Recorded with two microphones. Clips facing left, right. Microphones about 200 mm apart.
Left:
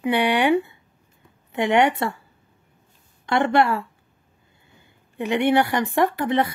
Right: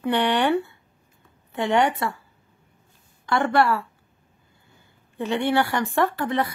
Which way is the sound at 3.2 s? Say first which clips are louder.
Left 2 dB; 20° left (ahead or behind).